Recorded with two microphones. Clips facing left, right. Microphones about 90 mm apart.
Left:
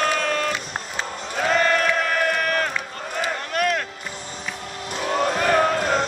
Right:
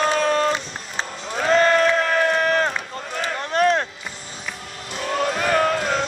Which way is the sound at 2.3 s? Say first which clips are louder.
Right 4 dB; 30° right (ahead or behind).